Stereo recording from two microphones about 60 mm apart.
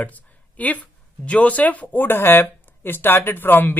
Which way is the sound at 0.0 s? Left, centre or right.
Left.